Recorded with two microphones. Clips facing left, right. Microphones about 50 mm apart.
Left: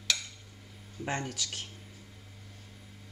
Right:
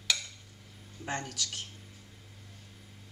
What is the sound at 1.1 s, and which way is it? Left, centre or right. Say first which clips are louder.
Speech: left 1 dB; centre.